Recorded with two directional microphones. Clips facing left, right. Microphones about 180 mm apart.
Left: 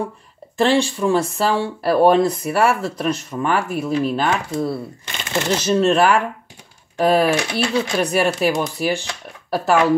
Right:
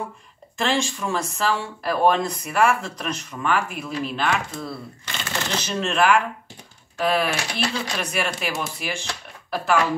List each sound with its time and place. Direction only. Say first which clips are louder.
0.6 s speech: left 7 dB; 35° left (ahead or behind)
5.0 s shuffling cards: left 5 dB; 20° left (ahead or behind)
5.6 s speech: left 7 dB; 35° left (ahead or behind)